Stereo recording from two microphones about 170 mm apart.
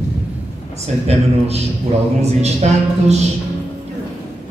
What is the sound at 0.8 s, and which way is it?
A woman's voice, 40° right (ahead or behind).